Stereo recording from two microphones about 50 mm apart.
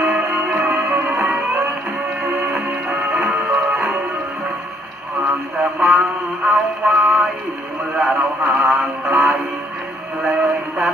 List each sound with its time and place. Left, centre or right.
0.1 s music: right
5.6 s radio: right
6.4 s music: centre
8.0 s a sound: centre